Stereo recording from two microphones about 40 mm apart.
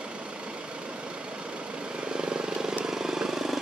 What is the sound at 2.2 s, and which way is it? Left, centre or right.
Vehicle, right.